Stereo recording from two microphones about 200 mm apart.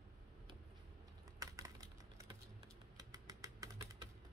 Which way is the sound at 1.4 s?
15° right (ahead or behind).